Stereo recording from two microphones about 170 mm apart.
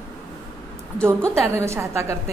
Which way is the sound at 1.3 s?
15° right (ahead or behind).